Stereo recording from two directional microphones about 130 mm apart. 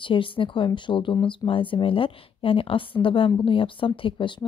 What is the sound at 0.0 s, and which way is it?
Speech, 40° left (ahead or behind).